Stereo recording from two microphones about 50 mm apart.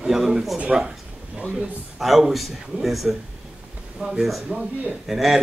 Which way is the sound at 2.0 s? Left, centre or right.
Centre.